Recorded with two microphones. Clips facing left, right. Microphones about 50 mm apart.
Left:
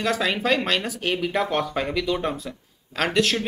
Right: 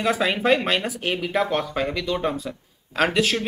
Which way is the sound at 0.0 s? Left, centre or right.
Centre.